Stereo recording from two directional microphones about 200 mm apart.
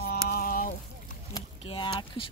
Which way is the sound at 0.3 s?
45° left (ahead or behind).